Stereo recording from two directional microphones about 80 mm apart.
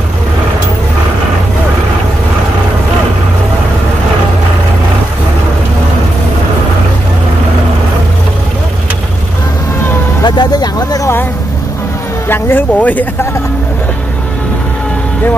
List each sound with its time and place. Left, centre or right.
10.2 s vehicle: left
12.3 s vehicle: left